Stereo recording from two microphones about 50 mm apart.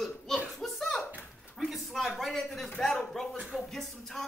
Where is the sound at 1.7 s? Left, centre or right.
Centre.